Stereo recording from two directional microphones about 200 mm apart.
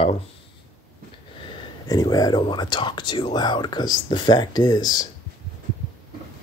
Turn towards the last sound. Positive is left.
turn(degrees=20)  # may be behind; listen again after turning